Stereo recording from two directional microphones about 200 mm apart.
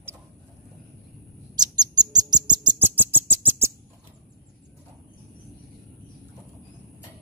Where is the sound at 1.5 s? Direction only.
20° right (ahead or behind).